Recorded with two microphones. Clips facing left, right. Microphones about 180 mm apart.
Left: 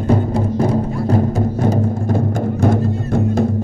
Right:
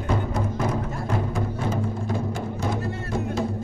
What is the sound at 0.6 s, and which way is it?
Music, 35° left (ahead or behind).